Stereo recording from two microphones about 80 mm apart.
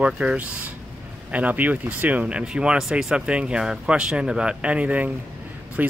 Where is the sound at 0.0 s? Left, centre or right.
Centre.